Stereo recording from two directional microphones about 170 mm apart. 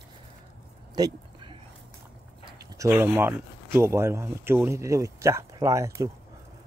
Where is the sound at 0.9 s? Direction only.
25° right (ahead or behind).